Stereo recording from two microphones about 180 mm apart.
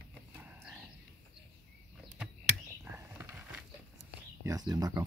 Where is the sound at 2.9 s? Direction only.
15° right (ahead or behind).